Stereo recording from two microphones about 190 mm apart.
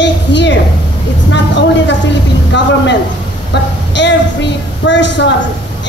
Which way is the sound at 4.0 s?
65° left (ahead or behind).